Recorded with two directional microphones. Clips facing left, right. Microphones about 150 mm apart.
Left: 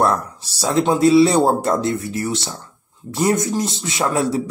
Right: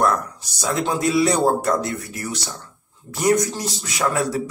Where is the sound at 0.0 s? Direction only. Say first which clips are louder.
Left 2 dB; 30° left (ahead or behind).